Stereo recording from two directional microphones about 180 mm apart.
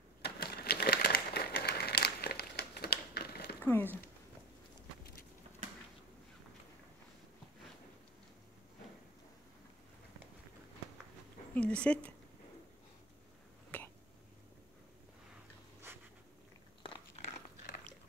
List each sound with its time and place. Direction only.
0.2 s typewriter: 60° left (ahead or behind)
3.6 s speech: 10° left (ahead or behind)
11.5 s speech: 5° left (ahead or behind)
13.7 s throat clearing: 10° left (ahead or behind)